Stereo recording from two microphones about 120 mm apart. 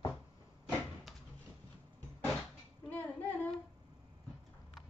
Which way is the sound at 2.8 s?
15° left (ahead or behind).